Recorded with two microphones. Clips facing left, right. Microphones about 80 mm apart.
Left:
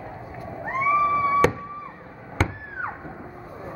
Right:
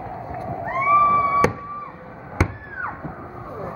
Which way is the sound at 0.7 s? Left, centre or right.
Centre.